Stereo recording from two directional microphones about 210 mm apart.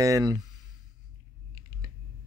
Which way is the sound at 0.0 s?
15° right (ahead or behind).